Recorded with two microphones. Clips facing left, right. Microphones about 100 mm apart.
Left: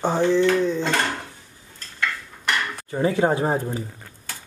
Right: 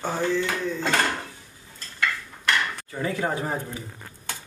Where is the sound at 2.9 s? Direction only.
30° left (ahead or behind).